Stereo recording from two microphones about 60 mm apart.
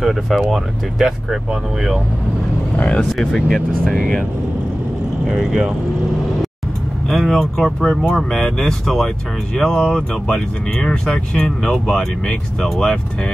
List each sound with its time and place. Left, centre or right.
0.0 s speech: centre
2.7 s speech: left
3.0 s speech: centre
5.2 s speech: centre
7.1 s speech: centre